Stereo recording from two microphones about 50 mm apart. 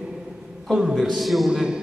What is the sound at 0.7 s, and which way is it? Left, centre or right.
Speech, centre.